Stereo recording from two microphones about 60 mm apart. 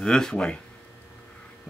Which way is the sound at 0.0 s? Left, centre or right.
Centre.